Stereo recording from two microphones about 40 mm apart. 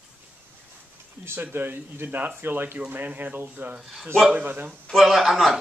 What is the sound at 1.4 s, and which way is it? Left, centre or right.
Speech, right.